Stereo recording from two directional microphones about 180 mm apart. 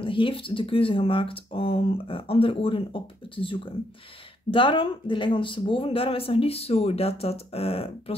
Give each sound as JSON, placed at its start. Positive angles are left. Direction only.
{"t": 0.0, "sound": "speech", "side_deg": 30}